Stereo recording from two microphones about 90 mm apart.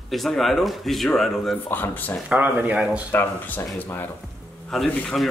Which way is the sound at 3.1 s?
20° left (ahead or behind).